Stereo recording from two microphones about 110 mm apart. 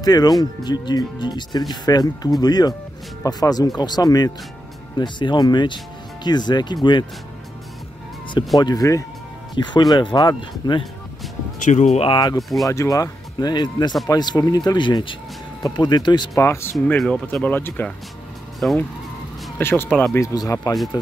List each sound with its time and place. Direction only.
0.0 s speech: 35° left (ahead or behind)
8.5 s speech: 35° left (ahead or behind)
11.7 s speech: 90° left
12.1 s speech: 40° left (ahead or behind)
12.4 s speech: centre (ahead or behind)
12.6 s speech: 30° left (ahead or behind)
16.3 s speech: 25° left (ahead or behind)
16.7 s speech: 5° left (ahead or behind)
20.2 s speech: 30° left (ahead or behind)